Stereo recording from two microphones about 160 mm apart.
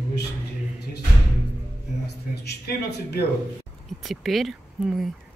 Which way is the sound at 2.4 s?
85° left.